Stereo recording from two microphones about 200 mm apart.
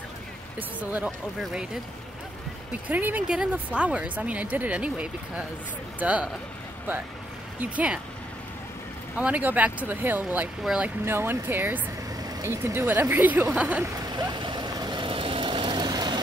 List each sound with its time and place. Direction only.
0.6 s speech: 5° right (ahead or behind)
2.7 s speech: 10° right (ahead or behind)
7.6 s speech: 5° right (ahead or behind)
9.1 s speech: 5° right (ahead or behind)
14.0 s vehicle: 20° right (ahead or behind)